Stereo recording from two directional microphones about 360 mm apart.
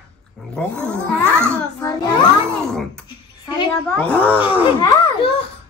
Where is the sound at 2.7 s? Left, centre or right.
Centre.